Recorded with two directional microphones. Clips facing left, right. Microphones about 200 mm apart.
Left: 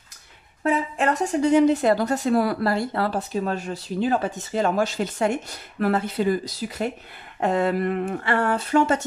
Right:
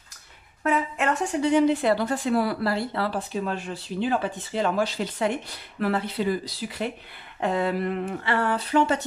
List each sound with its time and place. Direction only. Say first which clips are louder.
0.7 s speech: left 2 dB; 35° left (ahead or behind)